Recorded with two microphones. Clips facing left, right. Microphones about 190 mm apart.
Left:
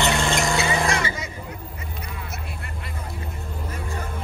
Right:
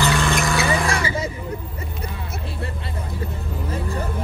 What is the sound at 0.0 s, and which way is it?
Vehicle, 20° left (ahead or behind).